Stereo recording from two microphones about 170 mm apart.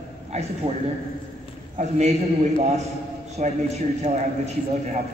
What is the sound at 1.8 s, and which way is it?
A man's voice, 40° right (ahead or behind).